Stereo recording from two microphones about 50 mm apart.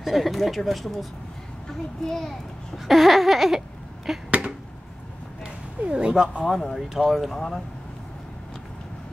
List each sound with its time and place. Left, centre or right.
0.0 s speech: centre
2.0 s a child's voice: centre
2.9 s a sound: centre
5.4 s speech: centre
6.4 s speech: centre